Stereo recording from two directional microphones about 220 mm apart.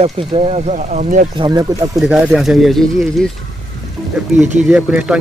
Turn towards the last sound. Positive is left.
turn(degrees=-5)  # may be behind; listen again after turning